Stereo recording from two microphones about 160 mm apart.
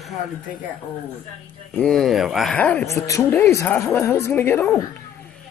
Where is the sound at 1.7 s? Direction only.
5° left (ahead or behind).